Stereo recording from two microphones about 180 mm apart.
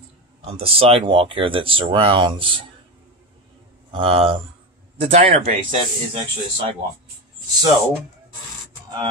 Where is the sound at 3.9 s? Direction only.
30° right (ahead or behind).